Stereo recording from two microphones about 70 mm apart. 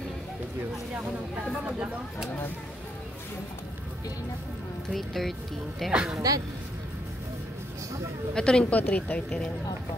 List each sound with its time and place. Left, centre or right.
1.8 s speech: centre
4.8 s speech: centre
5.9 s speech: centre
8.4 s a woman's voice: centre